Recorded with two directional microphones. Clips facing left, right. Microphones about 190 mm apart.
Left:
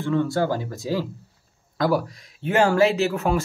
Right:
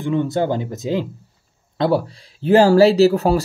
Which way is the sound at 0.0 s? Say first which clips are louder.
Right 3 dB; 20° right (ahead or behind).